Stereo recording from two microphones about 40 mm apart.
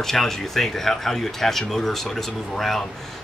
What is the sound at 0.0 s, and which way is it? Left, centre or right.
A man's voice, centre.